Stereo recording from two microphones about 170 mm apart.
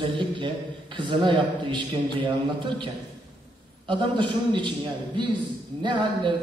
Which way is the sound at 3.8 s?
30° right (ahead or behind).